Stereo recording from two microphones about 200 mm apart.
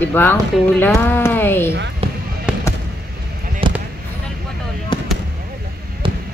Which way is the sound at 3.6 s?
25° right (ahead or behind).